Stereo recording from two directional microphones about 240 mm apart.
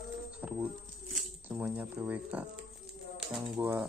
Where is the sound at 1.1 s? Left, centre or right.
Centre.